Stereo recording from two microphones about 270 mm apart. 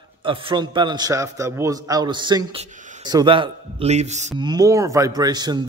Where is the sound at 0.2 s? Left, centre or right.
Centre.